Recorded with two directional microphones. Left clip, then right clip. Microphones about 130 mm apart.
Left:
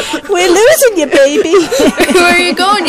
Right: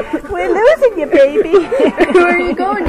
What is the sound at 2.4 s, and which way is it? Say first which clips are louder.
Speech: left 6 dB; 10° left (ahead or behind).